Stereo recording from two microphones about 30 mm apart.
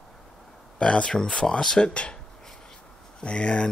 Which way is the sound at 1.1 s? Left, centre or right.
Centre.